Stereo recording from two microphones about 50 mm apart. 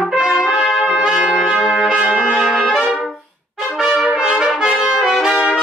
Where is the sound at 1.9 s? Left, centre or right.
Right.